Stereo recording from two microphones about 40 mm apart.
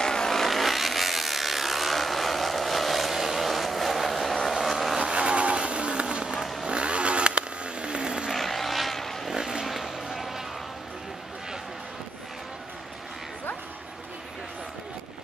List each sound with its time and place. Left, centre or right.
0.0 s chainsaw: centre
4.5 s vehicle: centre
4.9 s vehicle: right
6.3 s vehicle: centre
6.6 s vehicle: right
8.3 s vehicle: centre
9.3 s a sound: centre
9.7 s a sound: centre